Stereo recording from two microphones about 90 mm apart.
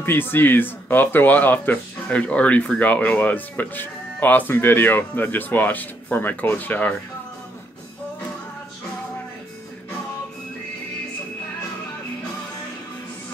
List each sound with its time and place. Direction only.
0.0 s speech: 25° left (ahead or behind)